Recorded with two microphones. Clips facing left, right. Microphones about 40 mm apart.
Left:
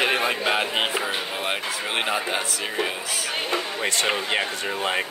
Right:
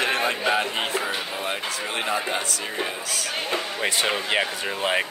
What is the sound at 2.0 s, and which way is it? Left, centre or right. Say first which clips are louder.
Speech: even; centre.